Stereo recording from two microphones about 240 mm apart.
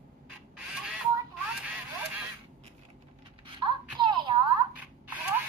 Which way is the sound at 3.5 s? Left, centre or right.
Centre.